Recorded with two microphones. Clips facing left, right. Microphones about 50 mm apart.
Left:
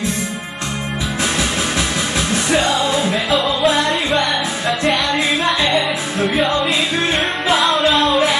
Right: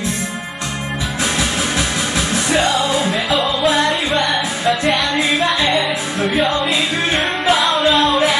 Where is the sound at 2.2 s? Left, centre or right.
Right.